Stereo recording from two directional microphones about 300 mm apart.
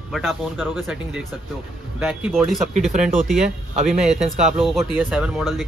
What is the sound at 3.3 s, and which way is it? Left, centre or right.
Speech, right.